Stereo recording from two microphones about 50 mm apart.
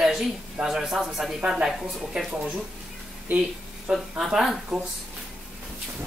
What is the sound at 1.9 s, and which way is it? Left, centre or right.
Speech, centre.